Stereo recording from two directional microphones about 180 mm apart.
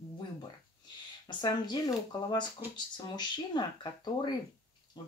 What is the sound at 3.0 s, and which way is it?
Speech, 25° left (ahead or behind).